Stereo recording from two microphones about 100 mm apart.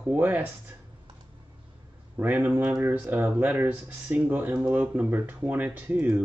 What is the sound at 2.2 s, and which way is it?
Speech, 20° right (ahead or behind).